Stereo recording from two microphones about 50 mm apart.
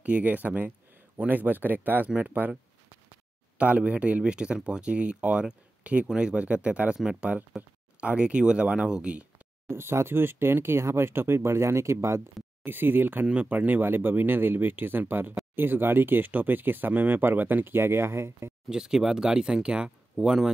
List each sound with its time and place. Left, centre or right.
0.0 s speech: right
3.5 s speech: right
9.7 s speech: right
12.6 s speech: right
13.3 s speech: right
18.7 s speech: centre
20.2 s speech: centre